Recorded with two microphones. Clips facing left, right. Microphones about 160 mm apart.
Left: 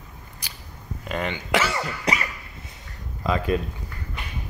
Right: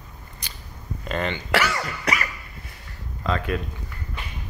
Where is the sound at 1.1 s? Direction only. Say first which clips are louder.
Even; 10° left (ahead or behind).